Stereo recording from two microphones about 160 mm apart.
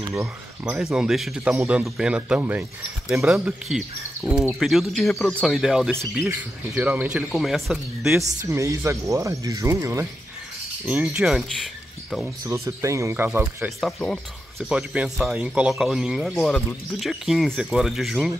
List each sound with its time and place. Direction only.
0.1 s speech: 15° right (ahead or behind)
1.6 s speech: 15° right (ahead or behind)
1.9 s speech: 5° right (ahead or behind)
5.9 s speech: 15° right (ahead or behind)
8.2 s speech: 45° right (ahead or behind)
8.5 s speech: 20° right (ahead or behind)
10.9 s speech: 10° right (ahead or behind)
12.4 s speech: 20° right (ahead or behind)
13.7 s speech: centre (ahead or behind)